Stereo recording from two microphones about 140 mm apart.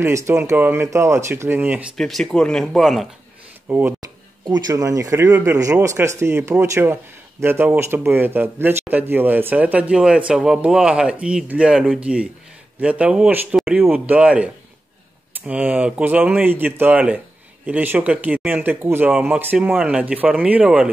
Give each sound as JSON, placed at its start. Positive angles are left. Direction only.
{"t": 0.0, "sound": "speech", "side_deg": -20}
{"t": 2.0, "sound": "speech", "side_deg": 0}
{"t": 3.6, "sound": "speech", "side_deg": -15}
{"t": 4.5, "sound": "speech", "side_deg": -30}